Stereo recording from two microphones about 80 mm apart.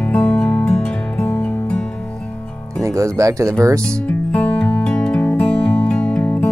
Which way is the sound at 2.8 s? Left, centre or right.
Right.